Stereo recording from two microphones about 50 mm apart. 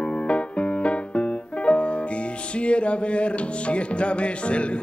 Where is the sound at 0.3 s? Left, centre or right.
Left.